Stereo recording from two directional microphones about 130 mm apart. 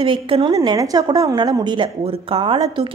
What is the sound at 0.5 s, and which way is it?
A woman's voice, 25° right (ahead or behind).